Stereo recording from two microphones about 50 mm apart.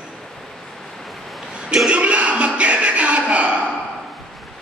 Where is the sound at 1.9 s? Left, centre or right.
Right.